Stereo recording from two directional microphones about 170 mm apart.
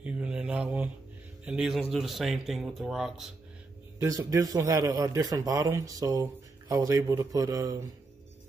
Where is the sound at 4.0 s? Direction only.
20° right (ahead or behind).